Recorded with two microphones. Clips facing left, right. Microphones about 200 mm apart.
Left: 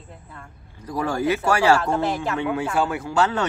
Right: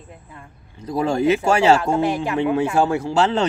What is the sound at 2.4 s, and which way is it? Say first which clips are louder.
Speech: right 6 dB; 25° right (ahead or behind).